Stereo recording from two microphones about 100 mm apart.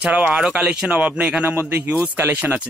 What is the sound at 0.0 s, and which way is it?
A man's voice, 15° right (ahead or behind).